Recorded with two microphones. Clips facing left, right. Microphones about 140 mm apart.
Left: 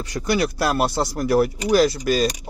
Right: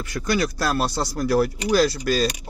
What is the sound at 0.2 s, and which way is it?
Speech, 25° left (ahead or behind).